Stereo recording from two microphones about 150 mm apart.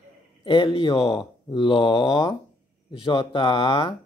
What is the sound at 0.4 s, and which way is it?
Speech, 35° left (ahead or behind).